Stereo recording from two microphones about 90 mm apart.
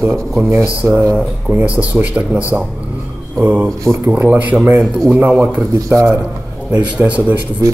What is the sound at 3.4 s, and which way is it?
A man's voice, 20° right (ahead or behind).